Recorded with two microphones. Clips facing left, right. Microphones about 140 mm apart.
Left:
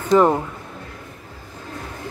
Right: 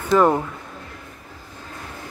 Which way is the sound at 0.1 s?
20° left (ahead or behind).